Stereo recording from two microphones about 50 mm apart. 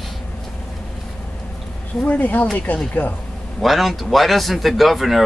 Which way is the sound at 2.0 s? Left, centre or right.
Left.